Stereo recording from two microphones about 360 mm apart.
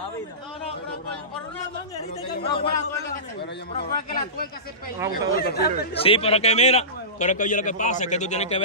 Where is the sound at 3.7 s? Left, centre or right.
Left.